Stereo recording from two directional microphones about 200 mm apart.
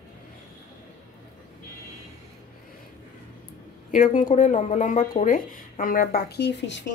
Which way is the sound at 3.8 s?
40° left (ahead or behind).